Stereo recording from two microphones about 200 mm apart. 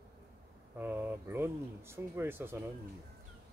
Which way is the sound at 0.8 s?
10° right (ahead or behind).